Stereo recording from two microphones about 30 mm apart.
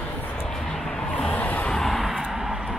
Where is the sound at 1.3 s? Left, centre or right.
Left.